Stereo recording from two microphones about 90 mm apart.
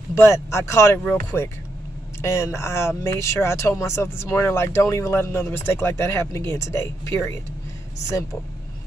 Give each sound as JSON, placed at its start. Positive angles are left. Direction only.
{"t": 0.1, "sound": "speech", "side_deg": 30}
{"t": 2.2, "sound": "speech", "side_deg": 30}